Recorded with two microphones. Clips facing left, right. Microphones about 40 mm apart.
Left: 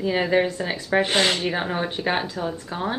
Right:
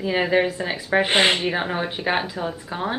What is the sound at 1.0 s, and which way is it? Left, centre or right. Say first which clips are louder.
Speech: right 3 dB; right.